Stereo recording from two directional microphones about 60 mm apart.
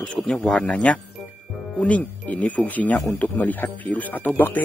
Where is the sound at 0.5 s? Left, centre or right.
Left.